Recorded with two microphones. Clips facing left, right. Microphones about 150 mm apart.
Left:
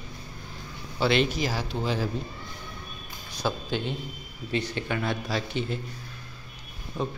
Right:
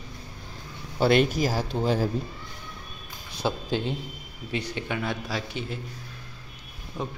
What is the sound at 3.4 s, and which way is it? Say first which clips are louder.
Speech: right 2 dB; 35° right (ahead or behind).